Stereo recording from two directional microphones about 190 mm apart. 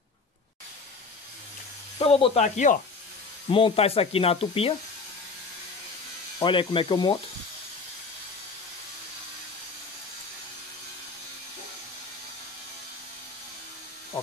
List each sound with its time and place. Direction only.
2.0 s speech: 30° left (ahead or behind)
3.4 s speech: 30° left (ahead or behind)
6.4 s speech: 25° left (ahead or behind)